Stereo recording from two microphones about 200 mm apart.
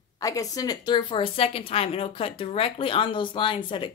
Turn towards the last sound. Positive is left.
turn(degrees=25)  # may be behind; listen again after turning